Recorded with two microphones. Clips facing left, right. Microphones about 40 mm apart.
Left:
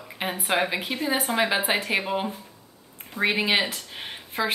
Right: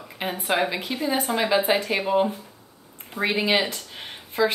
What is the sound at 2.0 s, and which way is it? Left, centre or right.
A woman's voice, centre.